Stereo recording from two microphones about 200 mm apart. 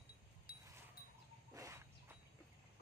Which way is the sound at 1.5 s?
15° right (ahead or behind).